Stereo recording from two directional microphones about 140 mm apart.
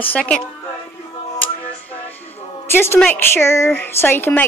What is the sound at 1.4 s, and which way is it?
Music, 10° left (ahead or behind).